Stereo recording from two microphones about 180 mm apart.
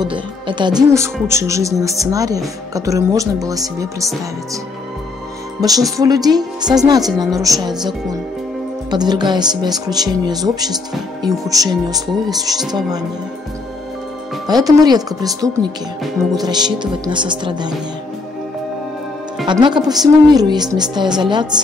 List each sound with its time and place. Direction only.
0.0 s speech: 25° right (ahead or behind)
5.6 s speech: 20° right (ahead or behind)
8.9 s speech: 25° right (ahead or behind)
14.5 s speech: 20° right (ahead or behind)
19.4 s speech: 25° right (ahead or behind)